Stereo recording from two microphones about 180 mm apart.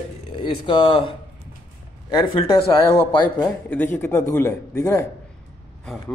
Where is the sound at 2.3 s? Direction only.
30° left (ahead or behind).